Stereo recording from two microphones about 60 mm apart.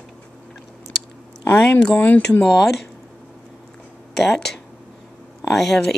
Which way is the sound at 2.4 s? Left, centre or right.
Centre.